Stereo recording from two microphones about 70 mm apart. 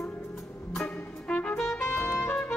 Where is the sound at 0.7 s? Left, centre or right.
Centre.